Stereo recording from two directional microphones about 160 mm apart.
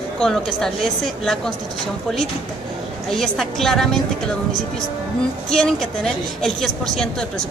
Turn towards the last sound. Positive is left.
turn(degrees=5)  # may be behind; listen again after turning